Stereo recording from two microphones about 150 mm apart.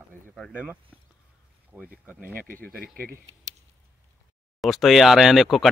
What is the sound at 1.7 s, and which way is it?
Speech, 5° right (ahead or behind).